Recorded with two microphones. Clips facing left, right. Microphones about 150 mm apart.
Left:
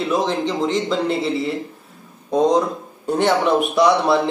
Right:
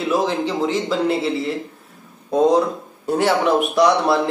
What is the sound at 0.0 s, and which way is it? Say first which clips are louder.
Speech: even; 5° right (ahead or behind).